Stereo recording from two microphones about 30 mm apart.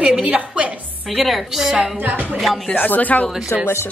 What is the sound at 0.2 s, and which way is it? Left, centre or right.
Music, right.